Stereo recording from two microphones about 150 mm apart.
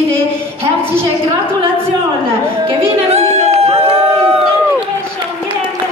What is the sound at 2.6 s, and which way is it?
Music, 40° right (ahead or behind).